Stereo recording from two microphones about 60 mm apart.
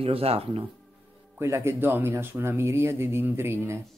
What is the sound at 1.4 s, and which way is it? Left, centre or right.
Speech, right.